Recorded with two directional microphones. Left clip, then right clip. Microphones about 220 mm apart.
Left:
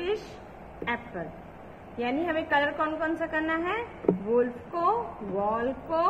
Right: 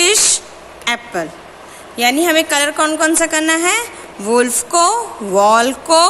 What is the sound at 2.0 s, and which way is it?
A woman's voice, 60° right (ahead or behind).